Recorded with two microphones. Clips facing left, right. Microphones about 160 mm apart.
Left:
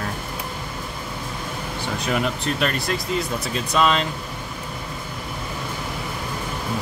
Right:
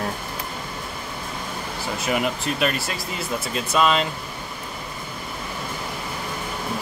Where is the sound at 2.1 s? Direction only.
5° right (ahead or behind).